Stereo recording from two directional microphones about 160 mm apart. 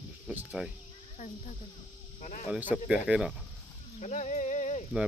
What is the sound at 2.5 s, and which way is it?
Speech, 10° right (ahead or behind).